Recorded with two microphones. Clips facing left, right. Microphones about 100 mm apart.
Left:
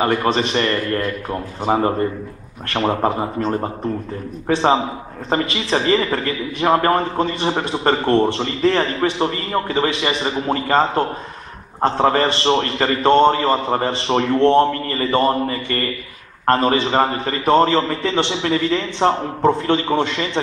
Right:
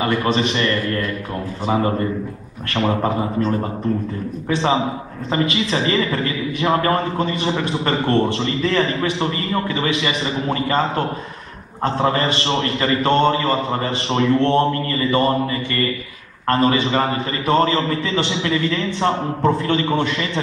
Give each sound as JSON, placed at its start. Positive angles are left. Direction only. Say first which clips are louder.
{"t": 0.0, "sound": "a man's voice", "louder": "left 1 dB", "side_deg": 35}
{"t": 4.5, "sound": "a man's voice", "louder": "left 3 dB", "side_deg": 35}